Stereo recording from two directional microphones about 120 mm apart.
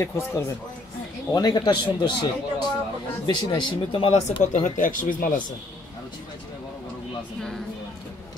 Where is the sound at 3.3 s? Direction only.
40° left (ahead or behind).